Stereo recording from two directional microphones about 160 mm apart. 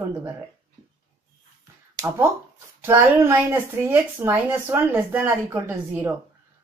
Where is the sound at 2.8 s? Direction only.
15° right (ahead or behind).